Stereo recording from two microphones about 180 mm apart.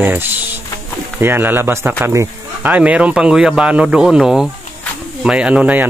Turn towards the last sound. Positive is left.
turn(degrees=-10)  # may be behind; listen again after turning